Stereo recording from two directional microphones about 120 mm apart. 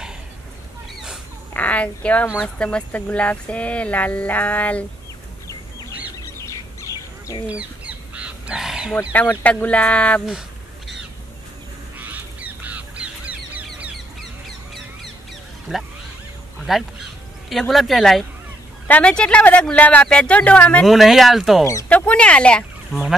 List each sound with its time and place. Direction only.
1.5 s a woman's voice: 10° left (ahead or behind)
6.2 s bird: 25° left (ahead or behind)
7.4 s bird: 10° right (ahead or behind)
9.1 s speech: 15° left (ahead or behind)
12.0 s crow: 15° right (ahead or behind)
15.7 s speech: 5° right (ahead or behind)
18.9 s speech: 10° left (ahead or behind)
20.8 s speech: centre (ahead or behind)
21.8 s speech: 10° left (ahead or behind)